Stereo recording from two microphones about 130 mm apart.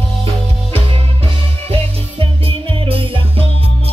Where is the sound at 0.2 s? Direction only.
45° right (ahead or behind).